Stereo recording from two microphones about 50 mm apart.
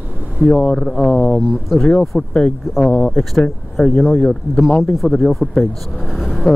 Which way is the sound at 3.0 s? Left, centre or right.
Centre.